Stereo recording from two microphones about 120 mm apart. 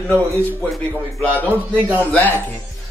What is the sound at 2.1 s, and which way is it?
Speech, 15° left (ahead or behind).